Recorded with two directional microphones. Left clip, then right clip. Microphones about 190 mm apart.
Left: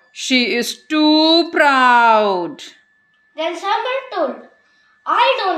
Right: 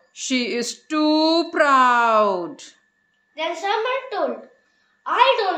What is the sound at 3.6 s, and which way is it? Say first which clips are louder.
A woman's voice: left 2 dB; 20° right (ahead or behind).